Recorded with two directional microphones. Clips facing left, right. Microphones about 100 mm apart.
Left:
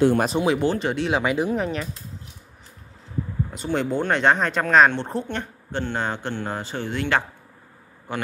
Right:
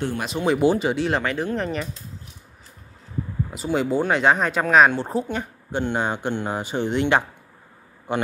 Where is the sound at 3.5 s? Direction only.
5° right (ahead or behind).